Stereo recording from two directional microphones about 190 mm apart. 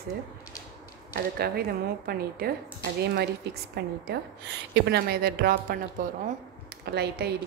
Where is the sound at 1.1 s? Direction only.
55° right (ahead or behind).